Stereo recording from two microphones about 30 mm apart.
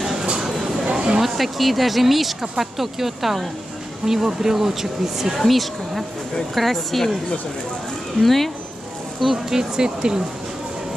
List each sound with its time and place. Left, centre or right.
0.4 s a sound: centre
0.9 s a sound: right
1.2 s speech: centre
5.4 s speech: centre
8.2 s speech: centre
9.5 s speech: right